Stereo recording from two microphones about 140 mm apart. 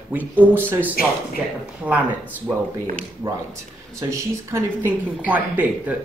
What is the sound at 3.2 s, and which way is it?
Speech, 20° right (ahead or behind).